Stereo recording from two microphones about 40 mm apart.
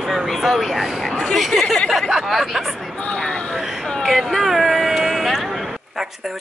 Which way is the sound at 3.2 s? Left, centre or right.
Centre.